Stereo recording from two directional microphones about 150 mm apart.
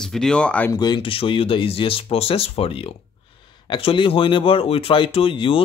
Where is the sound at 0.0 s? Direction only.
5° left (ahead or behind).